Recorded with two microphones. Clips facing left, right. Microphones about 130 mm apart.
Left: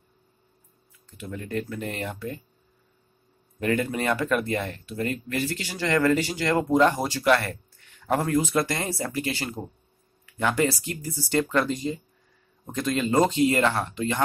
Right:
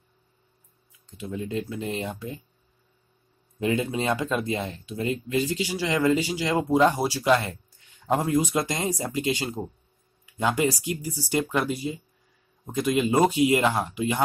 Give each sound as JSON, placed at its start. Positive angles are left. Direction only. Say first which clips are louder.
{"t": 1.0, "sound": "speech", "louder": "right 4 dB", "side_deg": -15}
{"t": 3.5, "sound": "speech", "louder": "even", "side_deg": -15}